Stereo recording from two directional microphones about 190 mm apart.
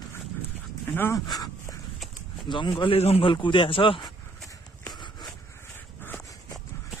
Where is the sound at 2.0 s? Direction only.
Centre (ahead or behind).